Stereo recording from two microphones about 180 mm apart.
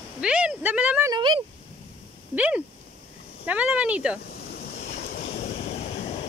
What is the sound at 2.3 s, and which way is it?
Speech, 5° right (ahead or behind).